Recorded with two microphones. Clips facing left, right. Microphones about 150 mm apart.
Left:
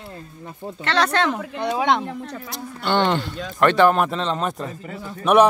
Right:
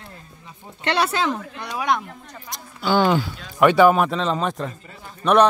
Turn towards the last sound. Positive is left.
turn(degrees=5)  # may be behind; listen again after turning